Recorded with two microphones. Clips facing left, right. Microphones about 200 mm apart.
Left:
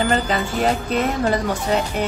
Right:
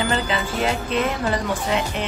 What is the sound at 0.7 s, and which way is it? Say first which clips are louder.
Speech: left 2 dB; 40° left (ahead or behind).